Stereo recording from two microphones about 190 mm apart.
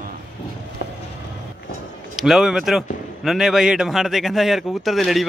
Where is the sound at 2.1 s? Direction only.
Centre (ahead or behind).